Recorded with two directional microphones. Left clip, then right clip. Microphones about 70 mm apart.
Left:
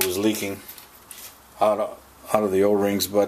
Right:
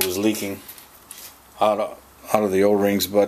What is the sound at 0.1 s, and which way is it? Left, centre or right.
Speech, centre.